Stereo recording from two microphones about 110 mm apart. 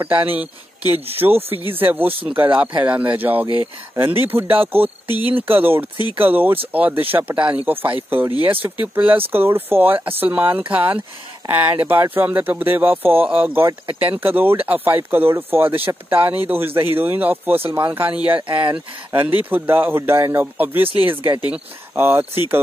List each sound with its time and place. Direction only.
0.0 s speech: 15° right (ahead or behind)